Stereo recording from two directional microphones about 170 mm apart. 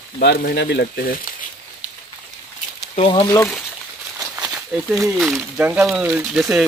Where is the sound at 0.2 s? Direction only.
75° left (ahead or behind); by 1.2 s 60° left (ahead or behind).